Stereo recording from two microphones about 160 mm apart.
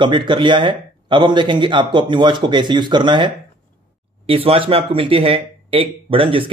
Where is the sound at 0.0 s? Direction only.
30° right (ahead or behind).